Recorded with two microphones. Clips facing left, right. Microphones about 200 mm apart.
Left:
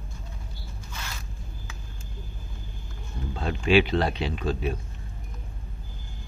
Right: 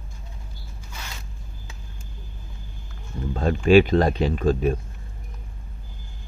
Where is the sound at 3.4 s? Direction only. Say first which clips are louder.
Right 6 dB; 45° right (ahead or behind).